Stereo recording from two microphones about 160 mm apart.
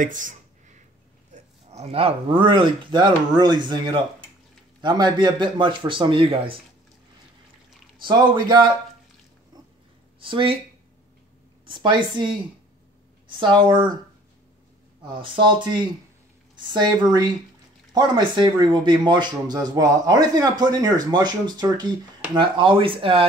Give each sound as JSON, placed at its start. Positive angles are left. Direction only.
{"t": 0.0, "sound": "speech", "side_deg": -55}
{"t": 1.7, "sound": "speech", "side_deg": -40}
{"t": 4.8, "sound": "speech", "side_deg": -30}
{"t": 8.0, "sound": "speech", "side_deg": -30}
{"t": 10.2, "sound": "speech", "side_deg": -35}
{"t": 11.6, "sound": "speech", "side_deg": -30}
{"t": 15.0, "sound": "speech", "side_deg": -30}